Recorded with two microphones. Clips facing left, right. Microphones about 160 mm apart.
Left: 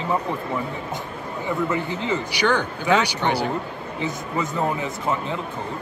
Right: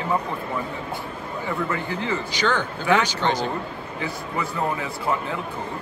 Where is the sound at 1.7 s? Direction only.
20° left (ahead or behind).